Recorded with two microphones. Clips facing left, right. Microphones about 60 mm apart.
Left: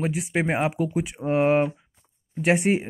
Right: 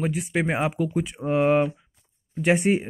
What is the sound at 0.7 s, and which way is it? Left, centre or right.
Speech, left.